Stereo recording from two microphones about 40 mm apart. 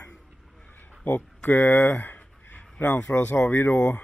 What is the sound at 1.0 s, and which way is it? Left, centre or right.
Speech, left.